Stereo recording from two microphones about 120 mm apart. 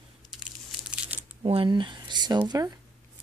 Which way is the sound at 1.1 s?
15° right (ahead or behind).